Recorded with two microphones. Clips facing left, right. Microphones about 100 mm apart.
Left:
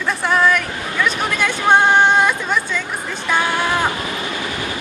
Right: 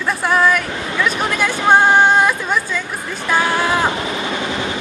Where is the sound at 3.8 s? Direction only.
25° right (ahead or behind).